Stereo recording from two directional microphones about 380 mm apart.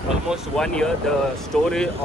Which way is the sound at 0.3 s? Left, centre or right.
Centre.